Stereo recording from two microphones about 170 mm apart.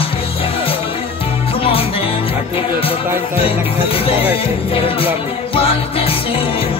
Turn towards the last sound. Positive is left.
turn(degrees=35)  # may be behind; listen again after turning